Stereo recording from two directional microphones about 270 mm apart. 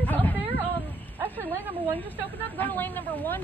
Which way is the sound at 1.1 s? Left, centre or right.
Centre.